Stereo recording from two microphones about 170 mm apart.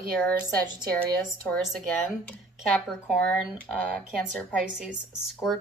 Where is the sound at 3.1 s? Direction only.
5° left (ahead or behind).